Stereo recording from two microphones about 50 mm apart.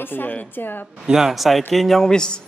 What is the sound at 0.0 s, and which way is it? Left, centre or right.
Speech, left.